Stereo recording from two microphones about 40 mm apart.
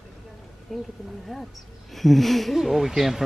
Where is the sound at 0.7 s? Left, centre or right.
Centre.